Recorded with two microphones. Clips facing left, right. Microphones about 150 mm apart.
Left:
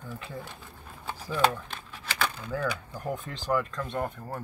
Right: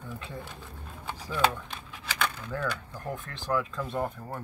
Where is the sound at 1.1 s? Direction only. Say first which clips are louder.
Left 1 dB; centre (ahead or behind).